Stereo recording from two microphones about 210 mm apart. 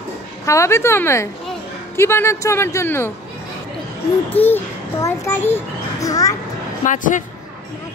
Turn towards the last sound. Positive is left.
turn(degrees=40)  # may be behind; listen again after turning